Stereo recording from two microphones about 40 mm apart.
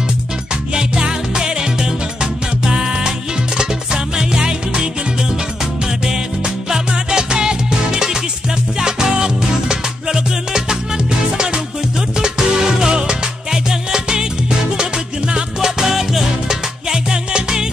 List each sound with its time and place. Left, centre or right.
0.7 s music: centre
6.0 s music: centre
15.8 s music: centre